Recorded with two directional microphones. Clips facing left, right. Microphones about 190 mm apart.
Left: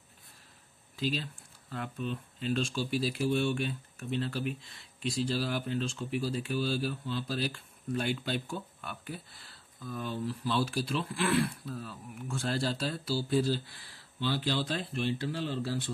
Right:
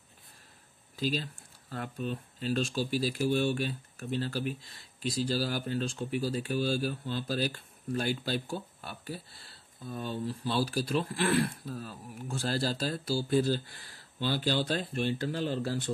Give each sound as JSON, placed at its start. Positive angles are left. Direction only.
{"t": 0.9, "sound": "speech", "side_deg": -40}